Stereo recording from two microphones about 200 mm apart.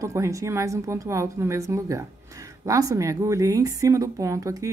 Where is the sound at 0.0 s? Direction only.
15° right (ahead or behind).